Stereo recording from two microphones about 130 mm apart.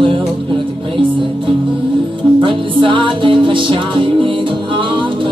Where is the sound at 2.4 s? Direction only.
40° right (ahead or behind).